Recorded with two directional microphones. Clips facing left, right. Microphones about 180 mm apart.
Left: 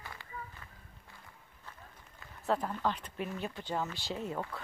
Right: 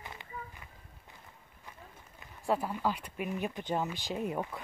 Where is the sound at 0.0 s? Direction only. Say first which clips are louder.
Right 1 dB; 20° right (ahead or behind).